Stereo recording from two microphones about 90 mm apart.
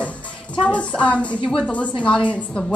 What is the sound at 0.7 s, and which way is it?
A woman's voice, 15° left (ahead or behind).